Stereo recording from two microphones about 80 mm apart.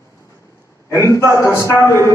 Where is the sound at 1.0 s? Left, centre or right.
Left.